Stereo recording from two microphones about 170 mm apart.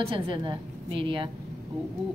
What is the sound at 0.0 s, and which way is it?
Speech, 30° right (ahead or behind).